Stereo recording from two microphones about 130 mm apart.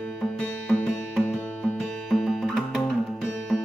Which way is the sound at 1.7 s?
Centre (ahead or behind).